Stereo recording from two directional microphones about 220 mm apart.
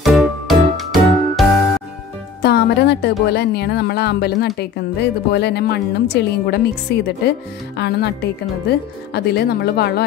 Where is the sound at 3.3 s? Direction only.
50° left (ahead or behind).